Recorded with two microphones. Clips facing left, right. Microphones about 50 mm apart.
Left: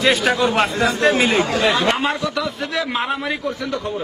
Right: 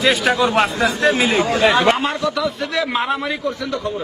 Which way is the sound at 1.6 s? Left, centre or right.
Right.